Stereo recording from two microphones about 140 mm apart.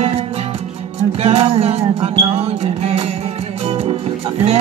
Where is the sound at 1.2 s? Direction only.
45° right (ahead or behind).